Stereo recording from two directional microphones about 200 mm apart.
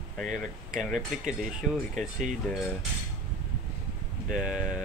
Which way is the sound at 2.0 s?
40° right (ahead or behind).